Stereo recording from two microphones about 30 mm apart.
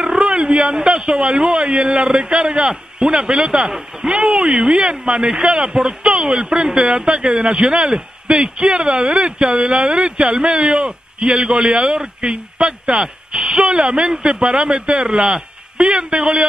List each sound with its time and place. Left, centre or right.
0.0 s a sound: centre
1.2 s a man's voice: right
3.6 s a man's voice: centre; by 12.0 s right
12.0 s a man's voice: right
12.5 s a man's voice: right
15.1 s a sound: right
15.9 s speech: right